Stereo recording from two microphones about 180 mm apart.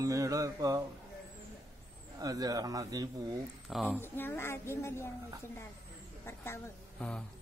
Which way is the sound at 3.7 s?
5° left (ahead or behind).